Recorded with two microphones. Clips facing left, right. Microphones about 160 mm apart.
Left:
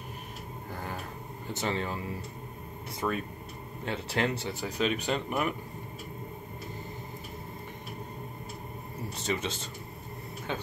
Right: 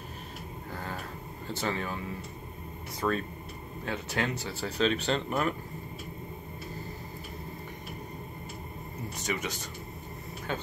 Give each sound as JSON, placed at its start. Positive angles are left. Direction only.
{"t": 1.5, "sound": "speech", "side_deg": 25}
{"t": 3.0, "sound": "speech", "side_deg": 10}
{"t": 3.8, "sound": "speech", "side_deg": 25}
{"t": 4.6, "sound": "speech", "side_deg": 10}
{"t": 9.1, "sound": "speech", "side_deg": 30}